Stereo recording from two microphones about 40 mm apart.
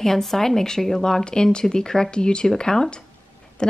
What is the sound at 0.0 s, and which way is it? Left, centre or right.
A woman's voice, centre.